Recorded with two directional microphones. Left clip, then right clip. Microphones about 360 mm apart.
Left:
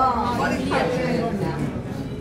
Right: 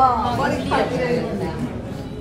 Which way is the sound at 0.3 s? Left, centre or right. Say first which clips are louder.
Right 2 dB; centre.